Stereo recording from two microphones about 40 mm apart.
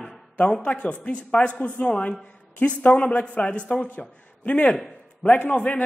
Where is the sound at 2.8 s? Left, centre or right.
Left.